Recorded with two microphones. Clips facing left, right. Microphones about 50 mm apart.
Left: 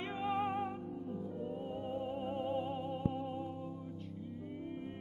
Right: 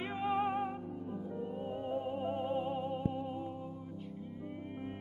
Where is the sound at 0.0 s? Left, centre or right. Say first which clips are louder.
Right 2 dB; centre.